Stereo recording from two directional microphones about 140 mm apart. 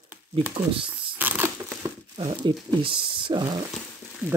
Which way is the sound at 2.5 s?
35° right (ahead or behind).